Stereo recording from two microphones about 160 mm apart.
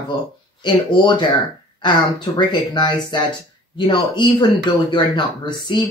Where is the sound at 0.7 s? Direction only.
30° left (ahead or behind).